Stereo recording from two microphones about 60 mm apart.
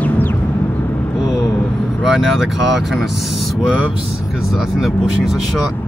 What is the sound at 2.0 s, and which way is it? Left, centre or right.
Speech, centre.